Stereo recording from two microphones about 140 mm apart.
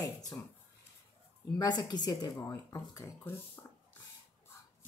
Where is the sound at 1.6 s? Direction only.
30° left (ahead or behind).